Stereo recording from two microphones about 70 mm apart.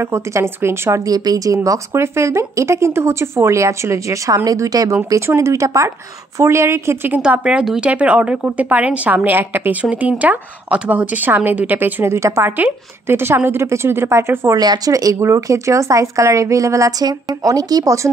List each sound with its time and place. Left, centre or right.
0.0 s a woman's voice: right
1.0 s speech: right
1.9 s speech: right
4.5 s speech: right
5.2 s a woman's voice: right
7.2 s a woman's voice: centre; by 12.4 s right
12.4 s a woman's voice: right
14.6 s speech: right
15.1 s speech: right
17.0 s speech: right